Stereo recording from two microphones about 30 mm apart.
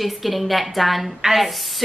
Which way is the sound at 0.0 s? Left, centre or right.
Centre.